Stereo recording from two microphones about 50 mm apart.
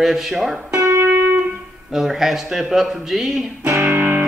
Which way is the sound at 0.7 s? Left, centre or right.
Right.